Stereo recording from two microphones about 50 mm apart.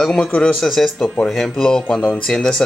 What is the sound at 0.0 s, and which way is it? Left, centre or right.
Speech, centre.